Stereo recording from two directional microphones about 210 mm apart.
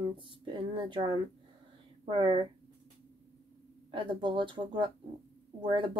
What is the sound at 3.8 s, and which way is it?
Speech, 20° right (ahead or behind).